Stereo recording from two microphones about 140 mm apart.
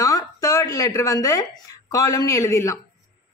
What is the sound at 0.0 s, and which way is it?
Speech, 25° left (ahead or behind).